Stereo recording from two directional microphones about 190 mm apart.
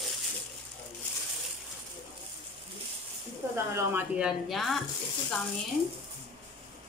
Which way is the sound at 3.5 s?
15° right (ahead or behind).